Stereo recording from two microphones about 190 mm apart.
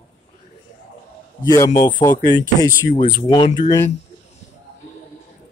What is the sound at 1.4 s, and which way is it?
Speech, 20° left (ahead or behind).